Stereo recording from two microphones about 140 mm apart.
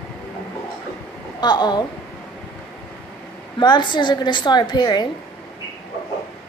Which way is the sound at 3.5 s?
35° left (ahead or behind).